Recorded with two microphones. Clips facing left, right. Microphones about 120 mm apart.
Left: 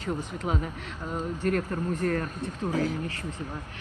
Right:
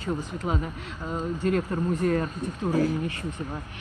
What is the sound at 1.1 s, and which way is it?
Speech, 15° right (ahead or behind).